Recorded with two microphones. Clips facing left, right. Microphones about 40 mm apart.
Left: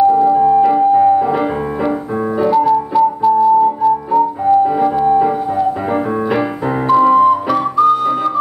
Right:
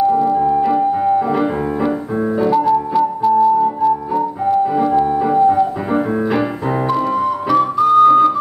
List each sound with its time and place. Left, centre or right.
0.1 s music: centre
6.9 s piano: centre
7.4 s music: centre